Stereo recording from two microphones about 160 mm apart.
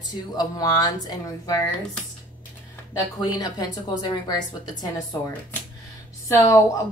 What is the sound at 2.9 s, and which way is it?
A woman's voice, 25° left (ahead or behind).